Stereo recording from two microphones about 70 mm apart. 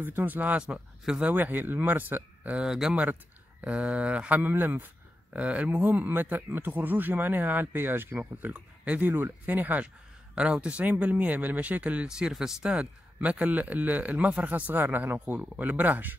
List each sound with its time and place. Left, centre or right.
0.0 s speech: right